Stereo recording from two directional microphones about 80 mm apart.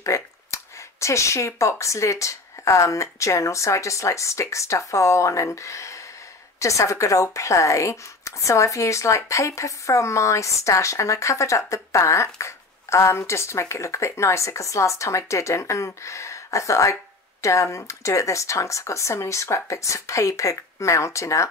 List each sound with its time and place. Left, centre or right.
0.0 s speech: left